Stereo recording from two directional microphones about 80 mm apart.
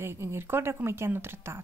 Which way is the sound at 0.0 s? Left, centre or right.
Right.